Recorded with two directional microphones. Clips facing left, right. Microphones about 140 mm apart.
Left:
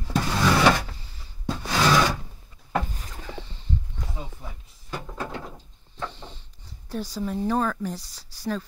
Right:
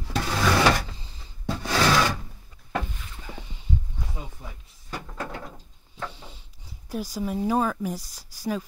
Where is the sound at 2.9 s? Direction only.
40° left (ahead or behind).